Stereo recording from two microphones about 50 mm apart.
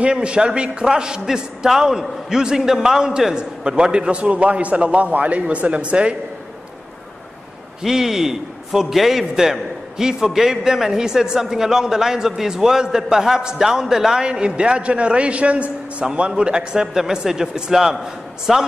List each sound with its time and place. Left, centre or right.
0.0 s a man's voice: right
7.8 s a man's voice: centre